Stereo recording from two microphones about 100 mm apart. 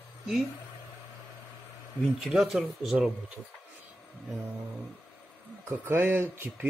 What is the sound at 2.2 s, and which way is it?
Speech, centre (ahead or behind).